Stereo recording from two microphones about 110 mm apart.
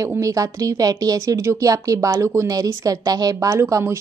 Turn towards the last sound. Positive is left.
turn(degrees=-25)  # may be behind; listen again after turning